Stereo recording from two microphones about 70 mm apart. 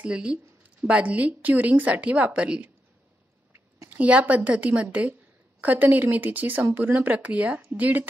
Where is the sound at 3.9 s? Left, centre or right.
Right.